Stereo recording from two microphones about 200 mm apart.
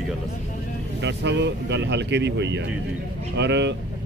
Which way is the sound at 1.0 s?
60° right (ahead or behind).